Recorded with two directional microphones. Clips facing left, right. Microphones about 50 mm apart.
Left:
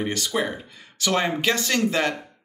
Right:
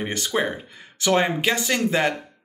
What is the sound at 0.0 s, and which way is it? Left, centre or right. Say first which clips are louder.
Speech: right 1 dB; right.